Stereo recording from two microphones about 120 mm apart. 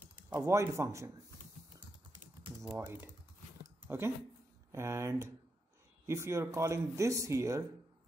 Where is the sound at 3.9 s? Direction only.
20° right (ahead or behind).